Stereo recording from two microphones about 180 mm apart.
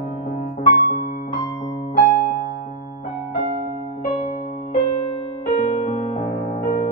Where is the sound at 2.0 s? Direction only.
50° left (ahead or behind).